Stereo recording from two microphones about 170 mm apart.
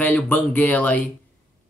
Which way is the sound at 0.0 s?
10° left (ahead or behind).